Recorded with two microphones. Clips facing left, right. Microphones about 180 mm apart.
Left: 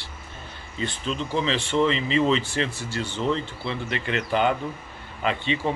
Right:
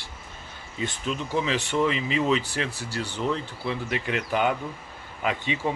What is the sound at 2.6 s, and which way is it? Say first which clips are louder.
Speech: left 1 dB; 35° right (ahead or behind).